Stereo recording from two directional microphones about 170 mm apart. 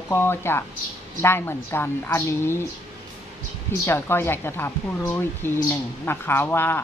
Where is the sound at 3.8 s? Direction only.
15° left (ahead or behind).